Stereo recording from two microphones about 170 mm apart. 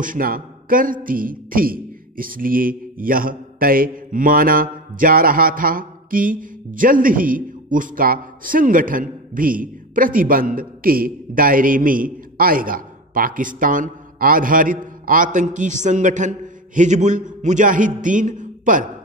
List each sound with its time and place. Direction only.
0.0 s speech: 55° right (ahead or behind)
1.0 s a sound: 55° right (ahead or behind)
3.0 s a man's voice: 55° right (ahead or behind)